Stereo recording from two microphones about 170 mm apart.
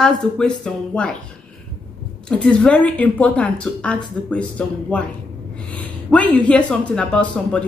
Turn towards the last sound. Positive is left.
turn(degrees=5)  # may be behind; listen again after turning